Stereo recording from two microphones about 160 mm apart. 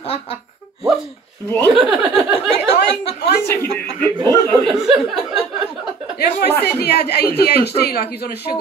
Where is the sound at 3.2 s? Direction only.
90° left.